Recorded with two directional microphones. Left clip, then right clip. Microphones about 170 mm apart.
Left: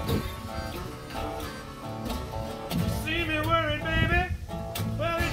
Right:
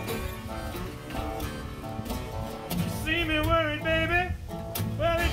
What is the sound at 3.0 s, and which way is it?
Music, 15° right (ahead or behind).